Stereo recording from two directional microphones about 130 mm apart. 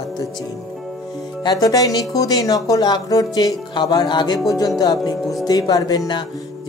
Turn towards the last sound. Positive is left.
turn(degrees=30)  # may be behind; listen again after turning